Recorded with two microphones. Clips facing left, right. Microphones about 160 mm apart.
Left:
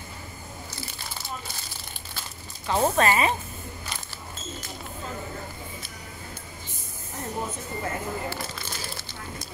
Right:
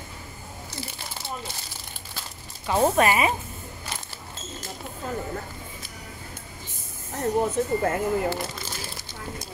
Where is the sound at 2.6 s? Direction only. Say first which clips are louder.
Right 2 dB; 10° right (ahead or behind).